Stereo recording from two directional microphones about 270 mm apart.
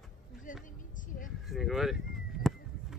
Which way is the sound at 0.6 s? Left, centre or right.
Left.